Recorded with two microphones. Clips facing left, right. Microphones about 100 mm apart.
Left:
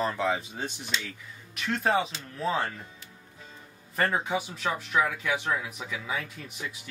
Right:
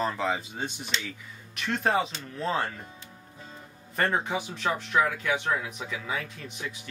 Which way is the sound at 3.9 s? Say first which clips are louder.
Even; centre (ahead or behind).